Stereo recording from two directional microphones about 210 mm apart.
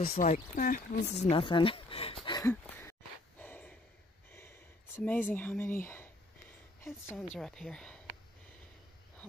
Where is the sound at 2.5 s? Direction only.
10° left (ahead or behind).